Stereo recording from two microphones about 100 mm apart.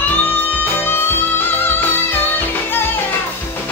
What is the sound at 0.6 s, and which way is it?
Music, 20° left (ahead or behind).